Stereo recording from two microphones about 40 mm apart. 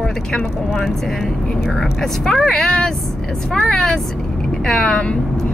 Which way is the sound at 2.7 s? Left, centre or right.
Centre.